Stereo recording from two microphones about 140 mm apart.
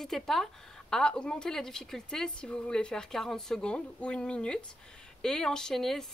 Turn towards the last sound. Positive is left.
turn(degrees=0)  # may be behind; listen again after turning